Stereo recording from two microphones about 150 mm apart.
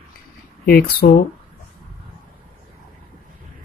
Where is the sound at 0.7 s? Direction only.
90° left.